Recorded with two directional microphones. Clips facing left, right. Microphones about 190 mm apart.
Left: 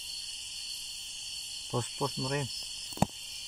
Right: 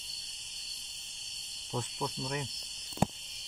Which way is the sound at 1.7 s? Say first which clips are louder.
Left 3 dB; 55° left (ahead or behind).